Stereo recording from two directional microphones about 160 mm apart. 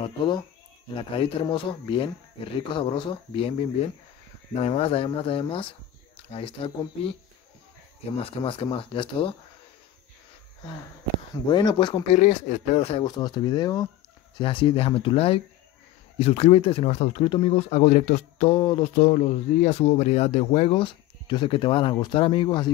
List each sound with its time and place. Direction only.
0.0 s speech: 30° left (ahead or behind)
8.3 s speech: 35° left (ahead or behind)
11.4 s speech: 25° left (ahead or behind)
12.1 s speech: 50° left (ahead or behind); by 18.9 s 30° left (ahead or behind)
18.9 s speech: 50° left (ahead or behind); by 22.7 s 30° left (ahead or behind)